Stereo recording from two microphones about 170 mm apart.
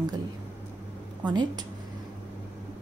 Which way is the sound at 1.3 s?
25° right (ahead or behind).